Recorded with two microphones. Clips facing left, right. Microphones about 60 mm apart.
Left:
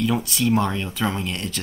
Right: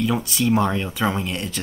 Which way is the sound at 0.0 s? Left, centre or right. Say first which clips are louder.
Even; centre.